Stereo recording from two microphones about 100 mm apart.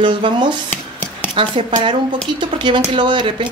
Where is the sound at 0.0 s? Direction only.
50° right (ahead or behind).